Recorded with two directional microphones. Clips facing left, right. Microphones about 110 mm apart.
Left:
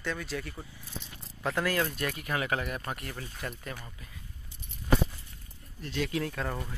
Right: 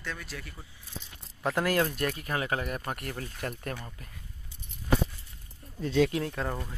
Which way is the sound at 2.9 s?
55° right (ahead or behind).